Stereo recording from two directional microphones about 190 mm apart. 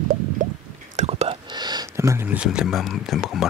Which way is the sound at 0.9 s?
35° right (ahead or behind).